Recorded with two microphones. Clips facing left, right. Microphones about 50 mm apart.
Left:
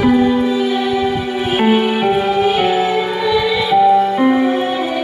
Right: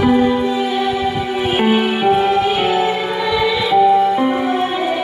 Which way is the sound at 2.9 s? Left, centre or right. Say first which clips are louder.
Left 2 dB; centre.